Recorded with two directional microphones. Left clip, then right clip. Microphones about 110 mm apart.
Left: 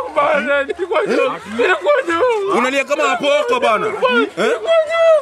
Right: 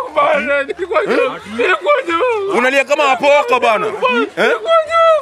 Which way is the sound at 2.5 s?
25° right (ahead or behind).